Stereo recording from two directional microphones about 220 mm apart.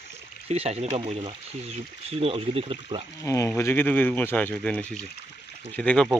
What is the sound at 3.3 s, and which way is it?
Speech, 15° left (ahead or behind).